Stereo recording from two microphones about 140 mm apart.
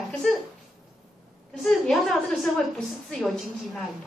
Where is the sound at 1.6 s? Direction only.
Centre (ahead or behind).